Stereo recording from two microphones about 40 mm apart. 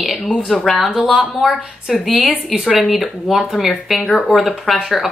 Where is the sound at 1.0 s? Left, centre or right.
Right.